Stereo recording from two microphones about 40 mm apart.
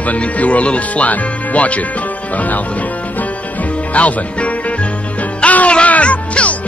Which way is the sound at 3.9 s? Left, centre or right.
Left.